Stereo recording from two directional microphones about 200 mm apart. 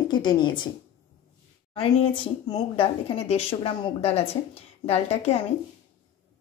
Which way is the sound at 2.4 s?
20° left (ahead or behind).